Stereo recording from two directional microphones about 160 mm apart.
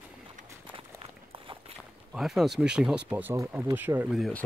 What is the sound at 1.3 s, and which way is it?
Walk, 35° right (ahead or behind).